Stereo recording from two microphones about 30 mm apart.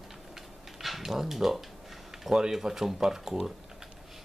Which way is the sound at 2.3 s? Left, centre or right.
Right.